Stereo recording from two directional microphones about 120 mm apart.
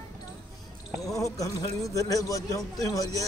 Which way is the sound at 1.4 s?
30° left (ahead or behind).